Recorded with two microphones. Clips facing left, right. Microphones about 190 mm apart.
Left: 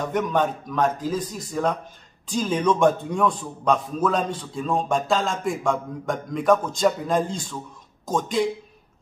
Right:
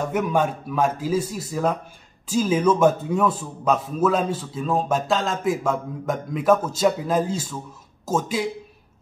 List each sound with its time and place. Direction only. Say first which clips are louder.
0.1 s a man's voice: left 1 dB; 10° right (ahead or behind)